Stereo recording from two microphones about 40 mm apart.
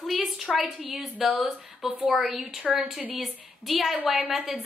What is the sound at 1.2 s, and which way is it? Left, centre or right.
Speech, right.